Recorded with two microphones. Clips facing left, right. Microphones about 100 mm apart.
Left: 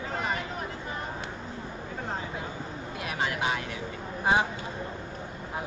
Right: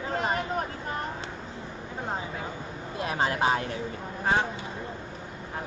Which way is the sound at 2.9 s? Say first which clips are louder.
Right 4 dB; 30° right (ahead or behind).